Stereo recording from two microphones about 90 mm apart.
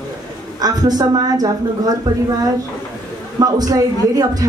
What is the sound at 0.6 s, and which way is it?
Speech, 45° right (ahead or behind).